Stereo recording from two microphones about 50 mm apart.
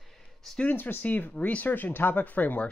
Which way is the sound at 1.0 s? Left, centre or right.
Left.